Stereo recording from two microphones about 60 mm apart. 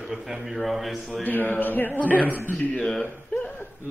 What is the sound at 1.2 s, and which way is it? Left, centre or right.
A man's voice, left.